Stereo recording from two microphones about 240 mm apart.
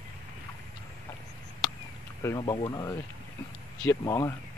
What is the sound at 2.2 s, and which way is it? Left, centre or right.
Speech, centre.